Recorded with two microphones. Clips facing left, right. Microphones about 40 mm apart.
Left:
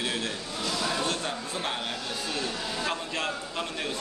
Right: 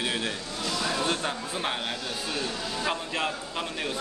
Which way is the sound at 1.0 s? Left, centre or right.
Centre.